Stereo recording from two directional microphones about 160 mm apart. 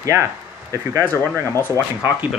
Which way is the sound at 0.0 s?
20° right (ahead or behind).